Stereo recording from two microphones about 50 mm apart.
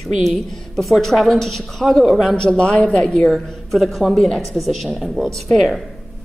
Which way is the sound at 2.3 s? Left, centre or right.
Centre.